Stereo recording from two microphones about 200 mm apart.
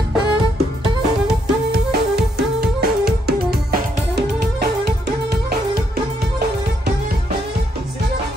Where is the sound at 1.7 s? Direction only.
55° right (ahead or behind).